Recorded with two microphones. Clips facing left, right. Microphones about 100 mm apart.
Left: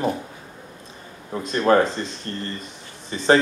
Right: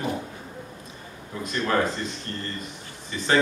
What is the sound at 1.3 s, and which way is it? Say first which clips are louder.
Speech: left 5 dB; 35° left (ahead or behind).